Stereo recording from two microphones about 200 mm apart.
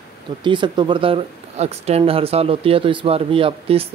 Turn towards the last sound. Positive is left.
turn(degrees=-30)  # may be behind; listen again after turning